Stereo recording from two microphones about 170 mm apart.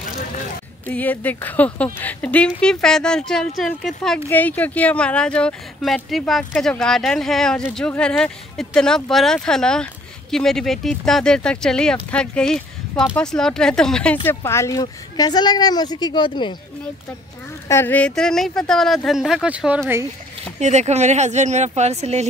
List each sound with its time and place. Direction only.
0.8 s speech: 10° left (ahead or behind)
14.2 s a woman's voice: 15° left (ahead or behind)
17.6 s speech: 15° left (ahead or behind); by 19.8 s 5° right (ahead or behind)
20.5 s speech: 40° right (ahead or behind)